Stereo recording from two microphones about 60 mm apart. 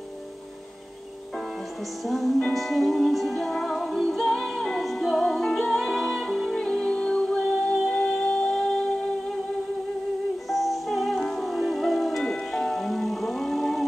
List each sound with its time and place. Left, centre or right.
2.0 s music: centre
4.3 s music: centre
10.5 s music: centre